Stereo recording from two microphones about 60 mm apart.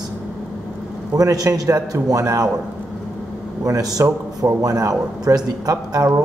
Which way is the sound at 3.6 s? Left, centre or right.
Right.